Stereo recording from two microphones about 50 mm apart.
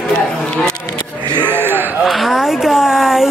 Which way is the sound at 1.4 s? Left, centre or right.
Right.